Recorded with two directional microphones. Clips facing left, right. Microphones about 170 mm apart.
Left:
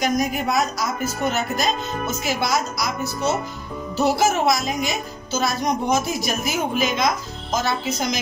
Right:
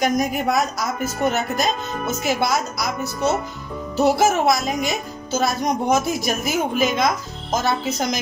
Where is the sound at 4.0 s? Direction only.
55° right (ahead or behind).